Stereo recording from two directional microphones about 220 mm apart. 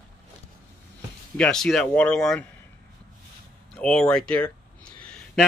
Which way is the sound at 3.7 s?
5° left (ahead or behind).